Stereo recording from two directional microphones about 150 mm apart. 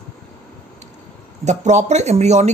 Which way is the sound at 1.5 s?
50° right (ahead or behind).